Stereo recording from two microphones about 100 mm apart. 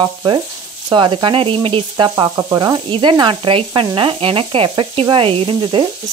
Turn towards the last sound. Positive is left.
turn(degrees=-60)  # may be behind; listen again after turning